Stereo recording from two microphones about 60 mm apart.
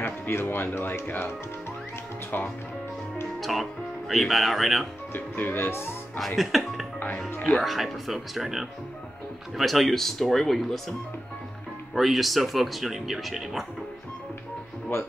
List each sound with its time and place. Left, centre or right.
0.0 s music: left
0.7 s speech: left
2.3 s speech: left
3.3 s speech: centre
5.1 s speech: left
6.1 s speech: centre